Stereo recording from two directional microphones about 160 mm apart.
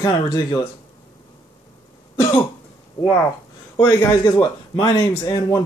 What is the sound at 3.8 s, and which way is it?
Speech, 20° left (ahead or behind).